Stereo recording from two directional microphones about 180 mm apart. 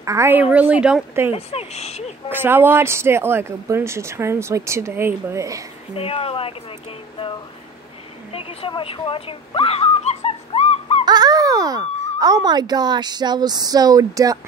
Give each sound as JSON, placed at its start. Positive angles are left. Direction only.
{"t": 0.0, "sound": "speech", "side_deg": -15}
{"t": 1.3, "sound": "speech", "side_deg": 35}
{"t": 2.2, "sound": "speech", "side_deg": -10}
{"t": 5.9, "sound": "speech", "side_deg": 30}
{"t": 8.3, "sound": "a sound", "side_deg": 30}
{"t": 11.1, "sound": "speech", "side_deg": -20}